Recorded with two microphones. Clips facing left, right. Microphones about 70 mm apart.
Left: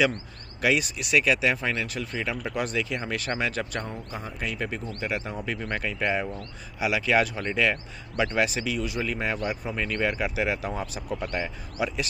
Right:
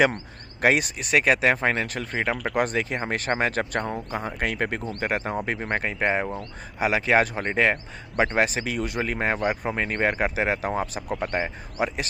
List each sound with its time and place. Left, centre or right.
0.6 s speech: right